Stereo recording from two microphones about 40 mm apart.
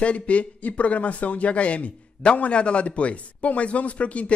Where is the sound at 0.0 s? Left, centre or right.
Left.